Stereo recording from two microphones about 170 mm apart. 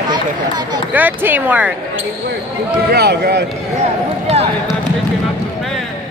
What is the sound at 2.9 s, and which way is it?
Speech, 70° right (ahead or behind).